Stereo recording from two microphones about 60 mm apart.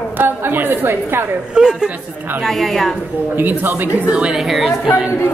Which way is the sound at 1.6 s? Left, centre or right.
Centre.